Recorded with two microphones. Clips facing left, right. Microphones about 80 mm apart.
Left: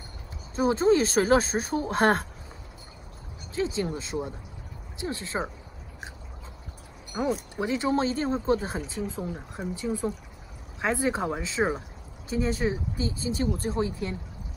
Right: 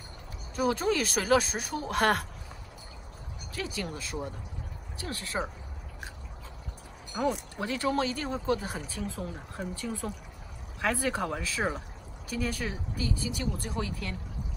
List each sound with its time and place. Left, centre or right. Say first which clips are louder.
0.6 s speech: left 6 dB; left
3.5 s speech: left 7 dB; left
7.1 s speech: left 2 dB; left